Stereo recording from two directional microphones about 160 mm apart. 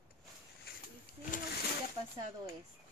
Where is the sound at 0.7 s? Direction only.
75° left (ahead or behind).